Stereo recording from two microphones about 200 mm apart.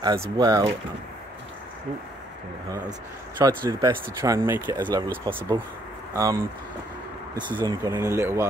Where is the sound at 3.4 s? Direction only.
15° right (ahead or behind).